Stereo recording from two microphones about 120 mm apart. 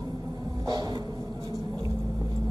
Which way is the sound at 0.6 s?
35° right (ahead or behind).